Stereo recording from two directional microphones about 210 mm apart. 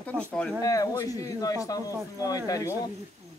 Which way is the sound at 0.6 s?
15° left (ahead or behind).